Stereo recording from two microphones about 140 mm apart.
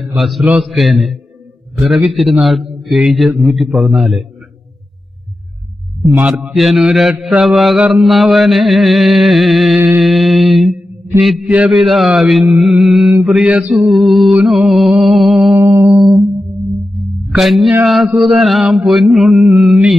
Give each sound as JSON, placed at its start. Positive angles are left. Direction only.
{"t": 0.0, "sound": "mantra", "side_deg": 0}
{"t": 6.1, "sound": "mantra", "side_deg": -10}
{"t": 15.5, "sound": "mantra", "side_deg": -25}
{"t": 16.9, "sound": "music", "side_deg": 0}
{"t": 17.8, "sound": "mantra", "side_deg": -5}